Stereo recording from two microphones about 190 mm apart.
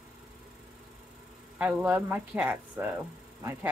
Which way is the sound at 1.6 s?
10° right (ahead or behind).